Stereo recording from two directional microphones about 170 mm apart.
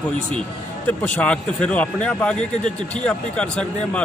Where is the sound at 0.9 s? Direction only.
10° left (ahead or behind).